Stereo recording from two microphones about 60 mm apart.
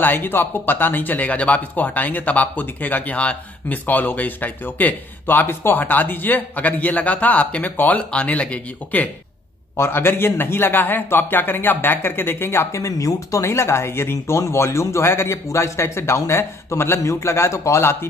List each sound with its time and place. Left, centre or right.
0.0 s speech: left
9.8 s a man's voice: left
12.9 s speech: left
13.5 s speech: left